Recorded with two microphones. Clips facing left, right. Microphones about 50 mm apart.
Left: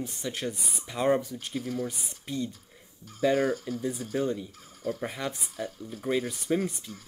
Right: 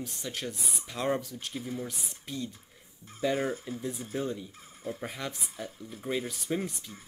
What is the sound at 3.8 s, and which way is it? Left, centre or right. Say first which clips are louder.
Speech: left 4 dB; centre.